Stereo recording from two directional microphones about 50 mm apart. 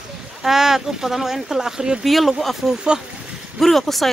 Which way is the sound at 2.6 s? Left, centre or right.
Centre.